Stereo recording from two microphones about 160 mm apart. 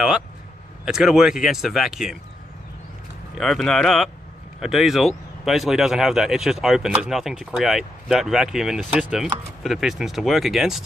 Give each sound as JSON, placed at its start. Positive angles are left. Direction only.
{"t": 0.8, "sound": "speech", "side_deg": -5}
{"t": 3.3, "sound": "speech", "side_deg": 0}